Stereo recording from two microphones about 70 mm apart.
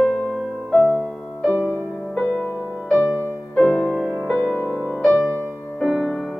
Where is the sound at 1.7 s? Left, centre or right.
Left.